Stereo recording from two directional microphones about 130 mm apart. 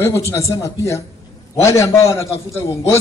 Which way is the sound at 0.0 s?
20° left (ahead or behind).